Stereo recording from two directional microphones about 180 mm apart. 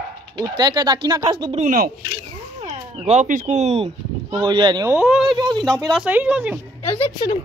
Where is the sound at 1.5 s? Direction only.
40° right (ahead or behind).